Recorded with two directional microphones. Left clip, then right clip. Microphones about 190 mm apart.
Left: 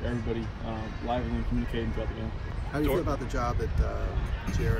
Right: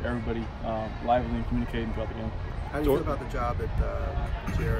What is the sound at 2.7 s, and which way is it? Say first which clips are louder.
Speech: right 2 dB; 25° left (ahead or behind).